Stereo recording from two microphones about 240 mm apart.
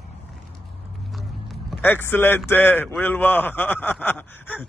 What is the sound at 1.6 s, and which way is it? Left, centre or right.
A man's voice, centre.